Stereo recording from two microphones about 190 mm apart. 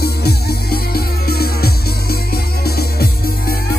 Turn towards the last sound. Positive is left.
turn(degrees=55)  # may be behind; listen again after turning